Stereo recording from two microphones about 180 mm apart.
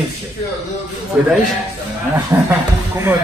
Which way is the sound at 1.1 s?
5° right (ahead or behind).